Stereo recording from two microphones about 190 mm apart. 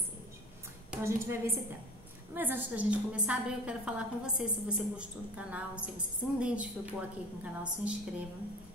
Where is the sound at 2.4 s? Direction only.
10° right (ahead or behind).